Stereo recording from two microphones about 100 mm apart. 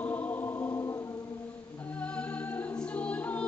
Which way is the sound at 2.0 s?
15° left (ahead or behind).